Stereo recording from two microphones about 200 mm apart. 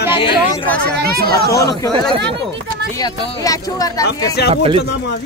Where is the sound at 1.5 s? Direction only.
15° left (ahead or behind).